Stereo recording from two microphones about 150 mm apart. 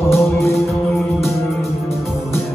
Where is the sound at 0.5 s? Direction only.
Centre (ahead or behind).